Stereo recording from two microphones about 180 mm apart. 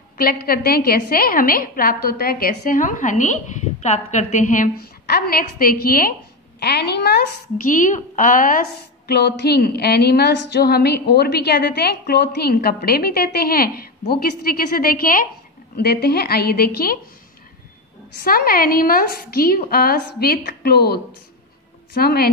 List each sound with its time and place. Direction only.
0.2 s a woman's voice: 55° left (ahead or behind)
6.6 s a woman's voice: 65° left (ahead or behind)
7.7 s a woman's voice: 45° left (ahead or behind)
9.0 s a woman's voice: 65° left (ahead or behind)
18.2 s a woman's voice: 55° left (ahead or behind)